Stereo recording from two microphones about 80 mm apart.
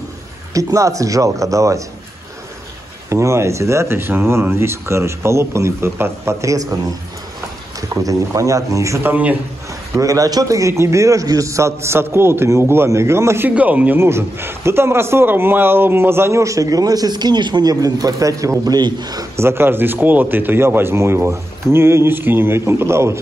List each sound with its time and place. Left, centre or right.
0.6 s speech: right
3.1 s a man's voice: right
7.9 s speech: right
9.0 s speech: centre
9.9 s a man's voice: right
13.6 s speech: centre
13.9 s a man's voice: right
18.8 s a man's voice: right
19.3 s a man's voice: right